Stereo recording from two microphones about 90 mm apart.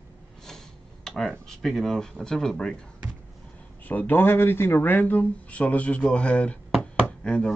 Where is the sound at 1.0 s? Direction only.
5° left (ahead or behind).